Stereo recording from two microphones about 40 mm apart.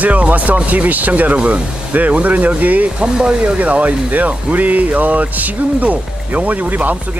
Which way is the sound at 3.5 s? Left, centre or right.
Right.